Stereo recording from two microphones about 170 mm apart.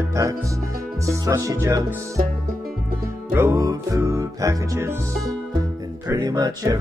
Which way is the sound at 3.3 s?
15° right (ahead or behind).